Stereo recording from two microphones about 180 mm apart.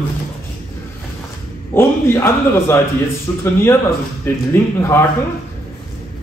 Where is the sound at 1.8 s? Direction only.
15° left (ahead or behind).